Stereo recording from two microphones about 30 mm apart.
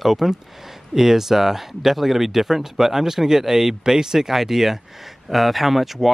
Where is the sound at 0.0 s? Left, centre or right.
Centre.